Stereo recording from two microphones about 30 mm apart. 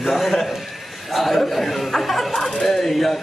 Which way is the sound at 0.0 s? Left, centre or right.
Centre.